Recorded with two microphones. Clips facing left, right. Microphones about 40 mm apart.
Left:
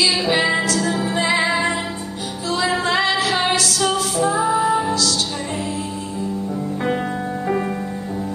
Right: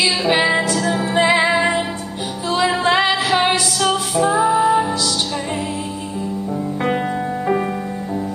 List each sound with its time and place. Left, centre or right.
0.0 s music: centre